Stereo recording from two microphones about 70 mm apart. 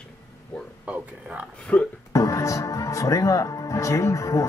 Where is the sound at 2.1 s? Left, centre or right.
Left.